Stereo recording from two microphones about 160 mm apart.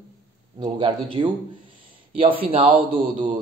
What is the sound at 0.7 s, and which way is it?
A man's voice, 30° right (ahead or behind).